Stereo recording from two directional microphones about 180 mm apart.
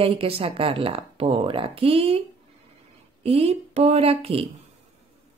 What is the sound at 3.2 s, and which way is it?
A woman's voice, 35° right (ahead or behind).